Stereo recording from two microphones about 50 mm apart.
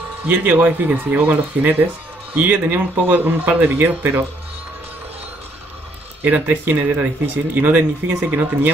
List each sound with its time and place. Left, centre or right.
0.3 s speech: right
6.2 s speech: right